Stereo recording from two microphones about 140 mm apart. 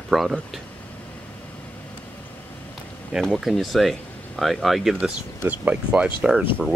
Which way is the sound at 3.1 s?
Centre (ahead or behind).